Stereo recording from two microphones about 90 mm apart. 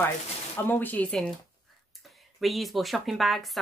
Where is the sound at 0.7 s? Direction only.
20° left (ahead or behind).